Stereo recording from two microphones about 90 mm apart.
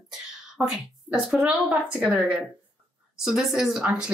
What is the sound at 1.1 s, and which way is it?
Speech, 15° right (ahead or behind).